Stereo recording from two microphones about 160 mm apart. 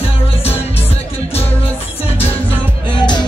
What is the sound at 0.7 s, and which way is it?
Music, 40° left (ahead or behind).